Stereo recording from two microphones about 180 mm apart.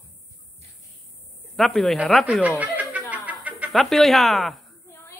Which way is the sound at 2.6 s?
10° right (ahead or behind).